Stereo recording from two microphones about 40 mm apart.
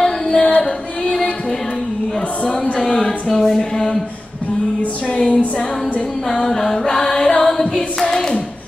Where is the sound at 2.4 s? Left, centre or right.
Left.